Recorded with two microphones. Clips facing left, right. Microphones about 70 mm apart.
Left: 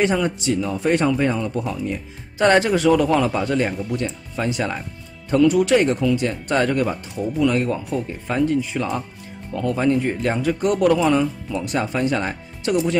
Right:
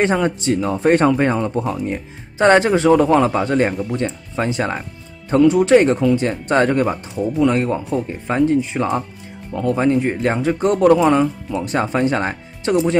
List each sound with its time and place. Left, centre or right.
0.0 s speech: right
2.4 s speech: right